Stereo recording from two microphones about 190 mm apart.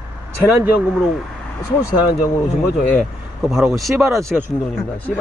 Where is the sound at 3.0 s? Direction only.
Centre (ahead or behind).